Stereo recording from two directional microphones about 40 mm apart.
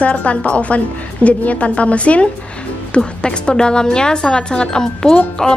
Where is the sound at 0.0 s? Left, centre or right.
Left.